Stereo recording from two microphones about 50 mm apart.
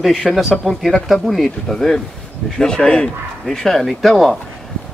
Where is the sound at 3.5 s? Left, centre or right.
Centre.